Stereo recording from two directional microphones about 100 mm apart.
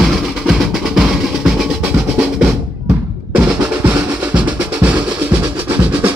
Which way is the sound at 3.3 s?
15° right (ahead or behind).